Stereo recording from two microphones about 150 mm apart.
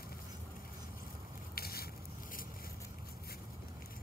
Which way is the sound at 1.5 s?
90° left.